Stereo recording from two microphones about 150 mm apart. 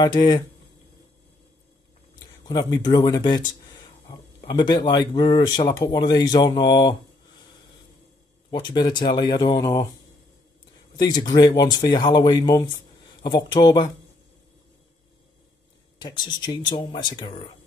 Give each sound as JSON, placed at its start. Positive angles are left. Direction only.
{"t": 0.0, "sound": "speech", "side_deg": 30}
{"t": 2.4, "sound": "speech", "side_deg": 25}
{"t": 8.5, "sound": "speech", "side_deg": 30}
{"t": 11.0, "sound": "speech", "side_deg": 25}
{"t": 16.0, "sound": "speech", "side_deg": 30}